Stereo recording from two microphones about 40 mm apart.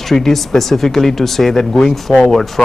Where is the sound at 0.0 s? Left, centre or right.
Centre.